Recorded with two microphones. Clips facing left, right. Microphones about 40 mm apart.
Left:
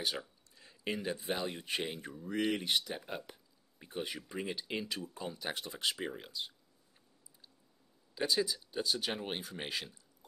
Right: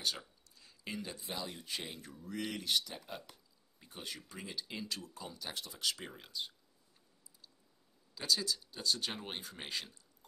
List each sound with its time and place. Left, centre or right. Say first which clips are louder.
0.0 s speech: left 2 dB; centre; by 1.9 s left
2.0 s speech: left 6 dB; left
5.9 s speech: left 4 dB; centre
8.1 s speech: left 3 dB; left